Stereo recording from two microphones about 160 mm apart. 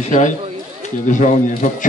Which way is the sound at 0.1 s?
55° left (ahead or behind).